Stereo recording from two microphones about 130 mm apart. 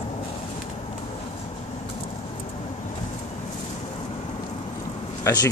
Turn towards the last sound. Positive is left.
turn(degrees=25)  # may be behind; listen again after turning